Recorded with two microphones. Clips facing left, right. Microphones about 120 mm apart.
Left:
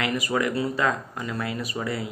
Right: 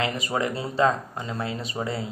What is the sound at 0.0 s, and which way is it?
A man's voice, 25° right (ahead or behind).